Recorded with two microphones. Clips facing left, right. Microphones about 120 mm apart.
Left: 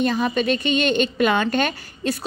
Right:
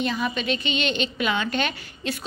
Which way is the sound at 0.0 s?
45° left (ahead or behind).